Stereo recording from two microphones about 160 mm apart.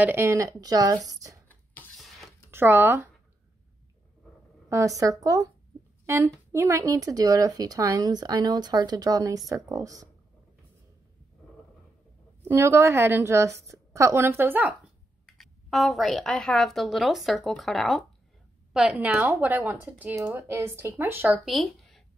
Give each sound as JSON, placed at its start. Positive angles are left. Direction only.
{"t": 0.0, "sound": "speech", "side_deg": -15}
{"t": 1.5, "sound": "a sound", "side_deg": 10}
{"t": 2.5, "sound": "a woman's voice", "side_deg": -15}
{"t": 4.6, "sound": "speech", "side_deg": -20}
{"t": 12.4, "sound": "a woman's voice", "side_deg": -15}
{"t": 15.2, "sound": "a woman's voice", "side_deg": 0}
{"t": 19.0, "sound": "a woman's voice", "side_deg": -15}
{"t": 21.5, "sound": "speech", "side_deg": 0}